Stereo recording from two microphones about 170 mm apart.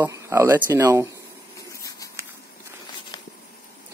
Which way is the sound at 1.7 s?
20° left (ahead or behind).